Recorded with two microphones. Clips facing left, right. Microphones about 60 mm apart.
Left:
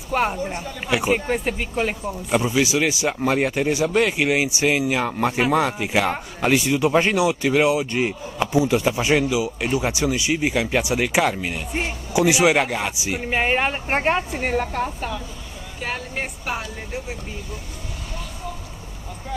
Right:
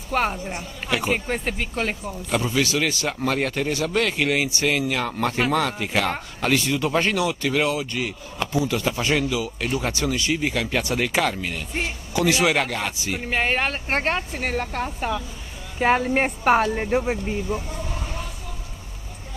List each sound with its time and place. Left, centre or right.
0.1 s speech: centre
15.0 s speech: centre
15.8 s speech: right